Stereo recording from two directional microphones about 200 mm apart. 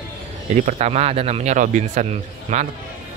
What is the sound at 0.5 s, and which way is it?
A man's voice, 35° right (ahead or behind).